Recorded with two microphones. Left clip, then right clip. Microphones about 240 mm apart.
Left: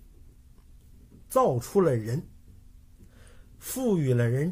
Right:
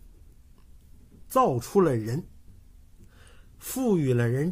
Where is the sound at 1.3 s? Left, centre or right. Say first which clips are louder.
Right 1 dB; centre.